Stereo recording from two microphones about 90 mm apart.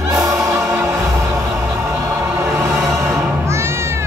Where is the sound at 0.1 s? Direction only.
35° right (ahead or behind).